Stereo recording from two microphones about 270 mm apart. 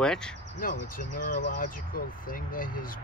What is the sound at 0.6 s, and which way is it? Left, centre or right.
Speech, left.